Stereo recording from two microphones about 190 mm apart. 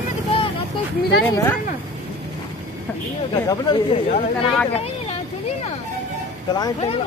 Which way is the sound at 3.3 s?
20° left (ahead or behind).